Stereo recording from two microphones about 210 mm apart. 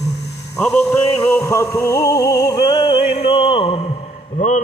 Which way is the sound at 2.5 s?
20° left (ahead or behind).